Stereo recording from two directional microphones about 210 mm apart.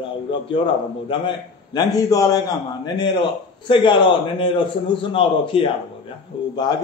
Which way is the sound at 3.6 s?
25° left (ahead or behind).